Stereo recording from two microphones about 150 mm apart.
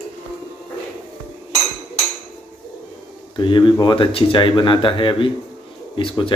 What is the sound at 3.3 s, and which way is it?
Speech, 30° left (ahead or behind).